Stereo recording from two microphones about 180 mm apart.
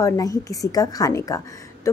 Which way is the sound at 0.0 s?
20° left (ahead or behind).